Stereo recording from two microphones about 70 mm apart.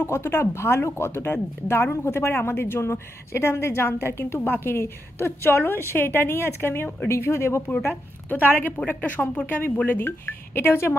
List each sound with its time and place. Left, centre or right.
0.0 s speech: left
7.7 s speech: left